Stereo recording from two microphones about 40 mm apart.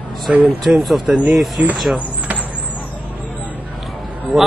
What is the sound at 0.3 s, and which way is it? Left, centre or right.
Speech, right.